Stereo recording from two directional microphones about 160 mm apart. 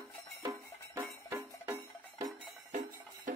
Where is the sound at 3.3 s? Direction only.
55° right (ahead or behind).